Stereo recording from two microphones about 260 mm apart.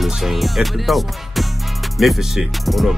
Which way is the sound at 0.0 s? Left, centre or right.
Centre.